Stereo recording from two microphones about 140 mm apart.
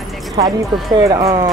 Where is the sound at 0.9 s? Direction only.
25° right (ahead or behind).